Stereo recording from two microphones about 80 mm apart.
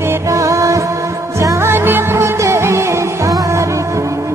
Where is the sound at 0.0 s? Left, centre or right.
Right.